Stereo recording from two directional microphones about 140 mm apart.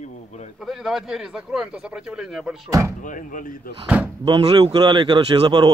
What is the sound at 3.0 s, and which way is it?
Speech, 70° left (ahead or behind).